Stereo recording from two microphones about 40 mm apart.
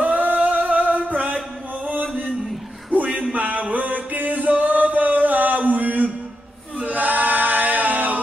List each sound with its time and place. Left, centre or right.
0.0 s singing: right
1.9 s a sound: right
2.9 s music: right
6.8 s choir: right